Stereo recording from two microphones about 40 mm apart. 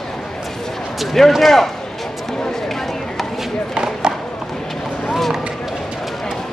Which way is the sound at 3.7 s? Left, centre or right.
Right.